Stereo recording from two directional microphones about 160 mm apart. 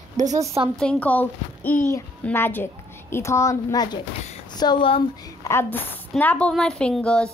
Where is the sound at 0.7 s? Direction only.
5° left (ahead or behind); by 5.0 s 30° left (ahead or behind).